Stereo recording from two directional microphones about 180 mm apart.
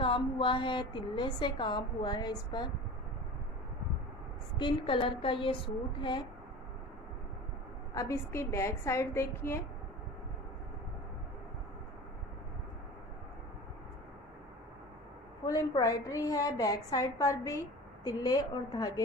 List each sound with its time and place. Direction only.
0.0 s a woman's voice: 25° left (ahead or behind)
4.6 s a woman's voice: 25° left (ahead or behind)
7.9 s a woman's voice: 15° left (ahead or behind)
15.4 s a woman's voice: 20° left (ahead or behind)